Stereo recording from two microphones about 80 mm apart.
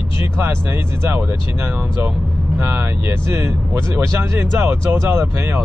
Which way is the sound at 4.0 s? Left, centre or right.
Right.